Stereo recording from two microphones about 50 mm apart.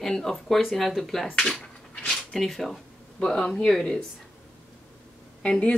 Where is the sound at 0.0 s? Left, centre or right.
Centre.